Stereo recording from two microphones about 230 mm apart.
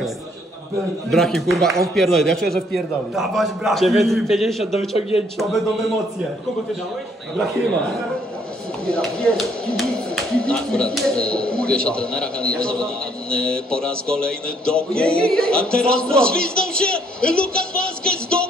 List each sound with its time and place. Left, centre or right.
1.1 s speech: centre
4.7 s a man's voice: left
8.8 s speech: centre